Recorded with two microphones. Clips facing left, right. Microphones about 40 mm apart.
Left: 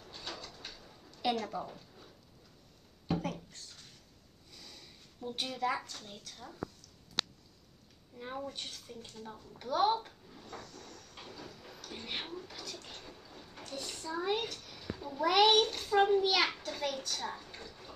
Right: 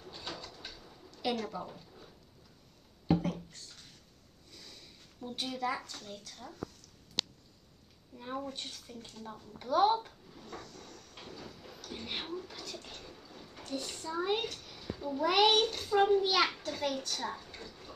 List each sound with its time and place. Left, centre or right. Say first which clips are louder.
0.3 s a sound: even; centre
1.4 s speech: even; centre
3.1 s a sound: right 5 dB; right
4.6 s sniff: even; centre
5.5 s speech: left 1 dB; centre
8.4 s speech: right 1 dB; centre
9.7 s cupboard open or close: right 2 dB; centre
13.1 s a sound: right 1 dB; centre
14.9 s a child's voice: even; centre